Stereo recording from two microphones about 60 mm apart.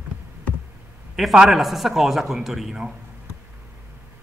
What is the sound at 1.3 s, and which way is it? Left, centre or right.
A man's voice, centre.